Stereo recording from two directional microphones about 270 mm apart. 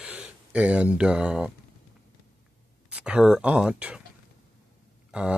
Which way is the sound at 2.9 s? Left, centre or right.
Centre.